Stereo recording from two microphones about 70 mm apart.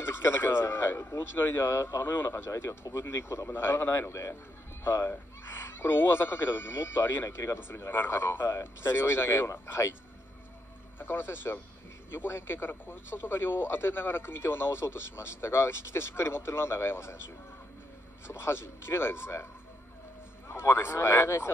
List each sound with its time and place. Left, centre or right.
0.0 s a man's voice: left
11.0 s a man's voice: left
18.2 s a man's voice: left
20.4 s a man's voice: left